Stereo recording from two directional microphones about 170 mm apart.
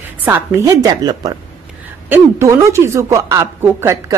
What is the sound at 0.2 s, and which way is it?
A woman's voice, 15° right (ahead or behind).